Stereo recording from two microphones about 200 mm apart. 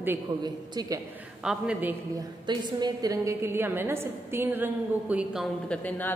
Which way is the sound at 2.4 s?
20° right (ahead or behind).